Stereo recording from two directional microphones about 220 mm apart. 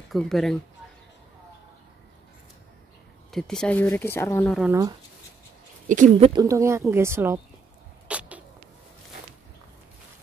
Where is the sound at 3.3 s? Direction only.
Centre (ahead or behind).